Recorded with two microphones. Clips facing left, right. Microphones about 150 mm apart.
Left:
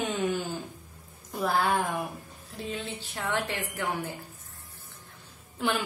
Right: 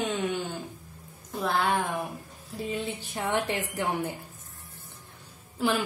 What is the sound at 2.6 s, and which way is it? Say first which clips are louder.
Music: right 3 dB; 15° right (ahead or behind).